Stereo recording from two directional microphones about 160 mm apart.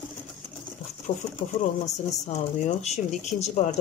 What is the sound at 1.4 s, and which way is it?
Speech, 60° left (ahead or behind).